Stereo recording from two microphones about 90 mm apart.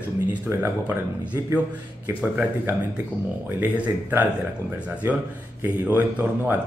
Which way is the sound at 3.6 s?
20° right (ahead or behind).